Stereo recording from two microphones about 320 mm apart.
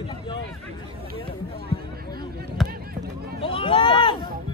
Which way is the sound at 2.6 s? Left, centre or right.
Right.